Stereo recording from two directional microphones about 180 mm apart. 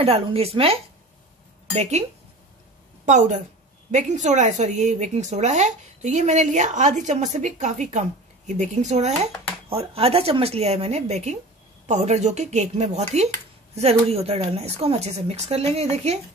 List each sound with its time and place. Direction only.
0.0 s a woman's voice: 35° right (ahead or behind)
3.1 s a woman's voice: 40° right (ahead or behind)